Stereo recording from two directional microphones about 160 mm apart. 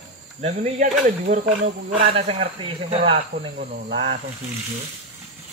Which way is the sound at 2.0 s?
40° right (ahead or behind).